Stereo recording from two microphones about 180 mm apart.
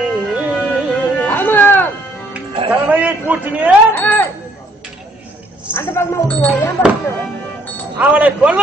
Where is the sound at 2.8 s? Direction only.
10° right (ahead or behind).